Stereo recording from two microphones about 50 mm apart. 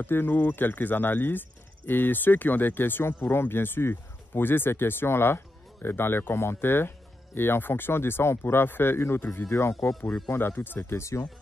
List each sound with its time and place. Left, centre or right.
0.0 s speech: left
9.5 s speech: left
10.5 s speech: left